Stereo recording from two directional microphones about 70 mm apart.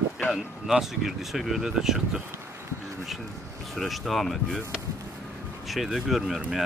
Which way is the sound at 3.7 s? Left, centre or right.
Centre.